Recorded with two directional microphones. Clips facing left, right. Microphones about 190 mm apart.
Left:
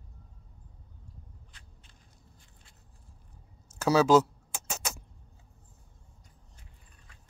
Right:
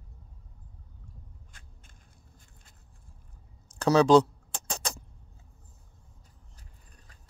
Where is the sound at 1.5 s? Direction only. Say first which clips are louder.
Right 1 dB; 45° right (ahead or behind).